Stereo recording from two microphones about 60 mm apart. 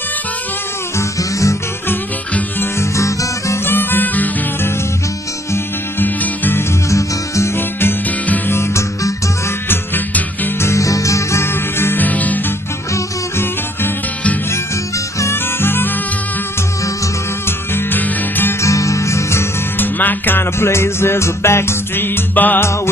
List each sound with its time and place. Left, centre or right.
0.9 s music: left
2.8 s guitar: left
3.6 s music: left
5.9 s music: left
6.9 s music: left
8.5 s music: left
9.7 s music: left
10.6 s music: left
11.4 s music: left
15.3 s music: left
17.5 s music: left
18.6 s music: left
19.8 s music: left
20.5 s music: left